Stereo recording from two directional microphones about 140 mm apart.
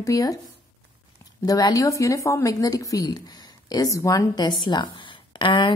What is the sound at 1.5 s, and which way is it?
Speech, 25° left (ahead or behind).